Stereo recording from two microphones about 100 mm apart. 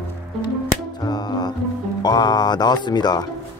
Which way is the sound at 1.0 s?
45° left (ahead or behind).